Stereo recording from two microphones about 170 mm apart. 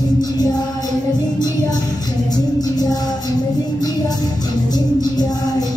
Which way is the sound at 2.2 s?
20° left (ahead or behind).